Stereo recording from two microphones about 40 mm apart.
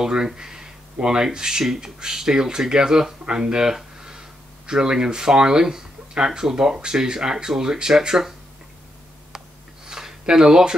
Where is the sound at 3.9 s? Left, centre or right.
Centre.